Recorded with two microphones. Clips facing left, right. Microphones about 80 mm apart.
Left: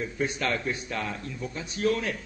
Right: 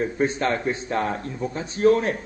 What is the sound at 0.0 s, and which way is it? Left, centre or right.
A man's voice, right.